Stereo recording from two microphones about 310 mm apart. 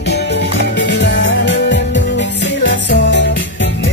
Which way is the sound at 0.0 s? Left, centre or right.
Left.